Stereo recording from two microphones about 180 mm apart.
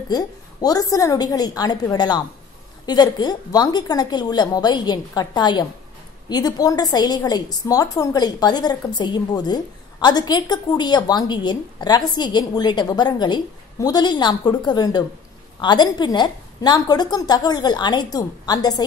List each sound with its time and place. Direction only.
0.1 s a woman's voice: 20° left (ahead or behind)